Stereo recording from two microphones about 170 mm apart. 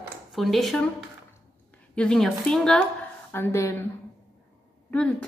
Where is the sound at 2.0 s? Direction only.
5° left (ahead or behind).